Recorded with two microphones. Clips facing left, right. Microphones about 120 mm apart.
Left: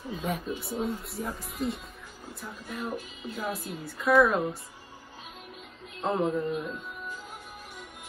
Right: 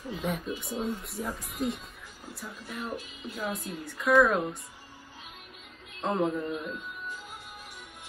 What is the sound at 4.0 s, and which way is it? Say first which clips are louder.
Speech: left 1 dB; centre (ahead or behind).